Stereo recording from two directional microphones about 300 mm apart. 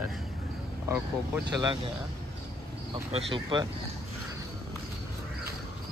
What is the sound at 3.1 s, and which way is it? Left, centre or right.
Speech, centre.